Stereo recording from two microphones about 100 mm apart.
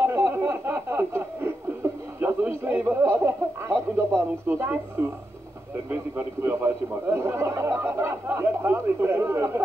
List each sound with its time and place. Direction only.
0.0 s a sound: 25° right (ahead or behind)
3.9 s speech: 25° right (ahead or behind)
5.9 s speech: 20° right (ahead or behind)